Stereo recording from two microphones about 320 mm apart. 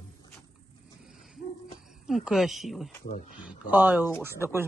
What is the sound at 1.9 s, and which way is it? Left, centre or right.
Speech, centre.